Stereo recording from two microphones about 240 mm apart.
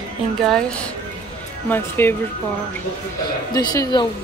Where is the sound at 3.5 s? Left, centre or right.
Centre.